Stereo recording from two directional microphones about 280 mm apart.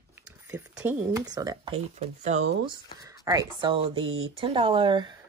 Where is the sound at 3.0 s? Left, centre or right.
Centre.